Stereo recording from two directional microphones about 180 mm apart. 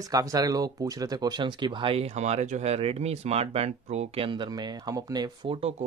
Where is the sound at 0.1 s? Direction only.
20° right (ahead or behind).